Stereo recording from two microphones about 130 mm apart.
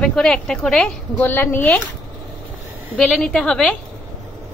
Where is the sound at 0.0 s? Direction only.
5° left (ahead or behind).